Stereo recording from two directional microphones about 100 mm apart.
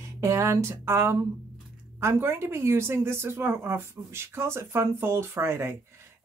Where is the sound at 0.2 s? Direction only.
30° right (ahead or behind).